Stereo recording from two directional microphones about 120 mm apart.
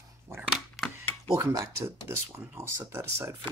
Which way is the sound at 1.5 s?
20° right (ahead or behind).